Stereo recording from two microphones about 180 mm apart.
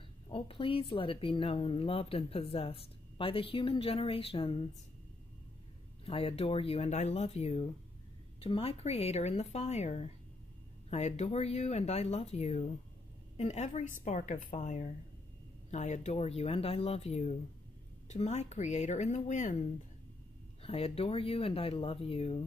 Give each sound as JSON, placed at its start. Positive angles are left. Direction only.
{"t": 0.3, "sound": "speech", "side_deg": 30}
{"t": 6.0, "sound": "a woman's voice", "side_deg": 30}
{"t": 20.6, "sound": "speech", "side_deg": 35}